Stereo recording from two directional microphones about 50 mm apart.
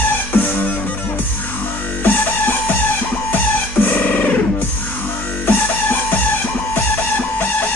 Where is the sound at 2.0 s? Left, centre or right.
Left.